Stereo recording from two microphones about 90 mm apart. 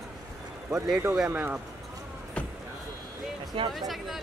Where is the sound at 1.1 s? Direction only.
10° right (ahead or behind).